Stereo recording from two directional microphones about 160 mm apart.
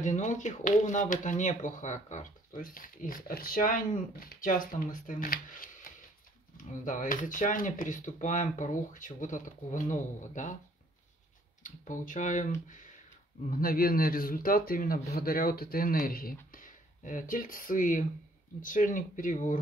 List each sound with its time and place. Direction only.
0.0 s speech: 50° left (ahead or behind)
11.6 s speech: 55° left (ahead or behind)
13.5 s speech: 65° left (ahead or behind)